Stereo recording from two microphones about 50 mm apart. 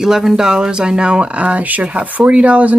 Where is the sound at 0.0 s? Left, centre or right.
Centre.